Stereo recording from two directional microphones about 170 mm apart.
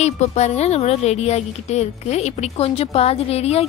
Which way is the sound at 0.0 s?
40° left (ahead or behind).